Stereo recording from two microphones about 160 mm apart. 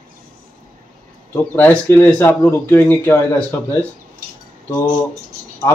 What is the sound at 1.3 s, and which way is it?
Speech, 10° left (ahead or behind).